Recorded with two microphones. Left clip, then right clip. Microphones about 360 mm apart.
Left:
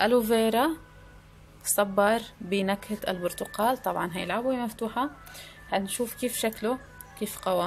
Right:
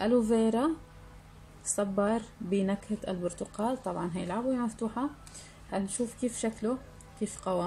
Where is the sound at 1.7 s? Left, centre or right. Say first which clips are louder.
Left 6 dB; left.